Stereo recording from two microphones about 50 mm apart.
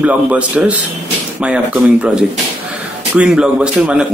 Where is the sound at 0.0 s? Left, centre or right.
Right.